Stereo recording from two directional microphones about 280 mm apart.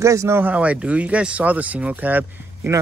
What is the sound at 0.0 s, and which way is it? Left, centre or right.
Speech, centre.